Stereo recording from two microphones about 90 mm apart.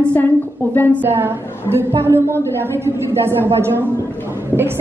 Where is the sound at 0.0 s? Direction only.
15° left (ahead or behind).